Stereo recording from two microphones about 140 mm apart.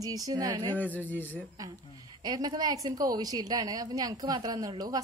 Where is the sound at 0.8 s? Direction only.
10° left (ahead or behind).